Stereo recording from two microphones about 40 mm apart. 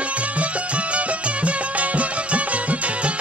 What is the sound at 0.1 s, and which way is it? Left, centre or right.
Music, right.